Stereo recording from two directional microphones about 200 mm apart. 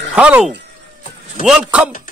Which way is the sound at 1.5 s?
5° right (ahead or behind).